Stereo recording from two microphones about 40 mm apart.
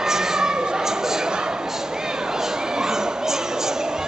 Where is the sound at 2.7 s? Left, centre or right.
Centre.